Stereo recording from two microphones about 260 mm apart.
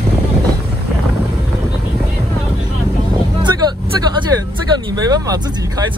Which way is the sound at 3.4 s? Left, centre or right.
Centre.